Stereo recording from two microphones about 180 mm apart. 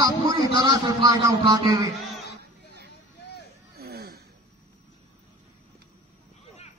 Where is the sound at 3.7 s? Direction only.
60° right (ahead or behind).